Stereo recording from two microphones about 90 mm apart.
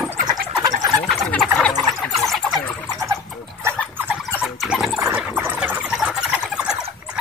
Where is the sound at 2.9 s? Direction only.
35° right (ahead or behind).